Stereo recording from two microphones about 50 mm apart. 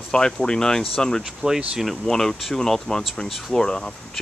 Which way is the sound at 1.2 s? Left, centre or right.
Centre.